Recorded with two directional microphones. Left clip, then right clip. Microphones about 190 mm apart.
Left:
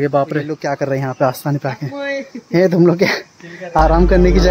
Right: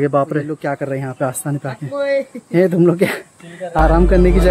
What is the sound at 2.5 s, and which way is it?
Speech, 5° left (ahead or behind).